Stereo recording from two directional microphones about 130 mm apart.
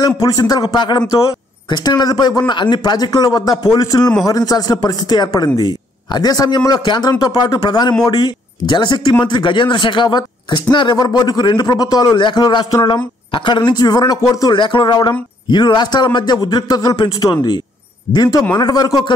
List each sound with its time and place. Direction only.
0.0 s speech: 30° left (ahead or behind)